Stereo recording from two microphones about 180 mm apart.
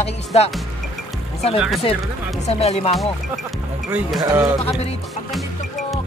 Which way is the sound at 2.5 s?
35° left (ahead or behind).